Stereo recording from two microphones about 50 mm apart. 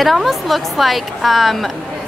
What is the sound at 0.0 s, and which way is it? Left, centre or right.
A woman's voice, centre.